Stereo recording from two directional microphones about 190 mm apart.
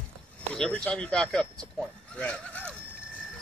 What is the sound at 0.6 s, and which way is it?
Speech, 5° left (ahead or behind).